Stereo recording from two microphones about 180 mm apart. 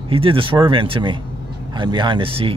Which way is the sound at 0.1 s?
30° right (ahead or behind).